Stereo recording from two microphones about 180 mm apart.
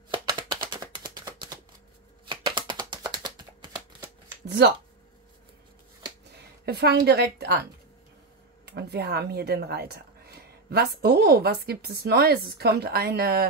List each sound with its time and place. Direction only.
0.1 s a sound: 25° right (ahead or behind)
2.2 s typing: 25° right (ahead or behind)
4.5 s speech: 60° right (ahead or behind)
6.3 s a woman's voice: 65° right (ahead or behind)
8.7 s speech: 65° right (ahead or behind)